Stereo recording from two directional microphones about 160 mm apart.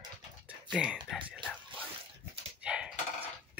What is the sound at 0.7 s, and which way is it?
Speech, 5° right (ahead or behind).